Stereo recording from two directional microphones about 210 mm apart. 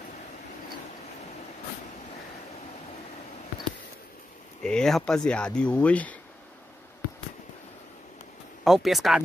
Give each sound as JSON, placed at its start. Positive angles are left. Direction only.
{"t": 4.6, "sound": "speech", "side_deg": 5}
{"t": 8.6, "sound": "speech", "side_deg": 0}